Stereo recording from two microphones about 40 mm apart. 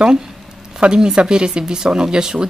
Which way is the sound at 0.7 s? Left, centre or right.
Right.